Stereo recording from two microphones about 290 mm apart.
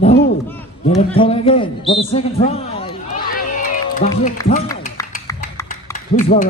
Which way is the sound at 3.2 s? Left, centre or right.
Left.